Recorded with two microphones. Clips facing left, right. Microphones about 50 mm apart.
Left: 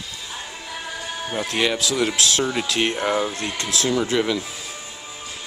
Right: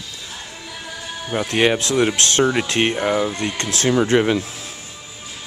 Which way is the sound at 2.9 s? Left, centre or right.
Centre.